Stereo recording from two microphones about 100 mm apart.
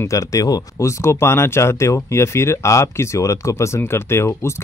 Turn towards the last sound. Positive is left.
turn(degrees=25)  # may be behind; listen again after turning